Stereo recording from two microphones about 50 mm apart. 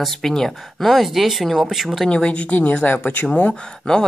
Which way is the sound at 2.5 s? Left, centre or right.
Left.